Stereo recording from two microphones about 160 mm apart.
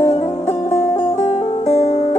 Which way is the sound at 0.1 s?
45° left (ahead or behind).